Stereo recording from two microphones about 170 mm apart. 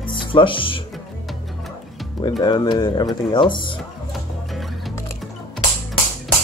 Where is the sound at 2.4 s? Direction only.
25° left (ahead or behind).